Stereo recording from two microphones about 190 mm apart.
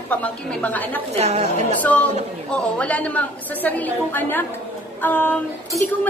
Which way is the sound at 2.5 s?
5° left (ahead or behind).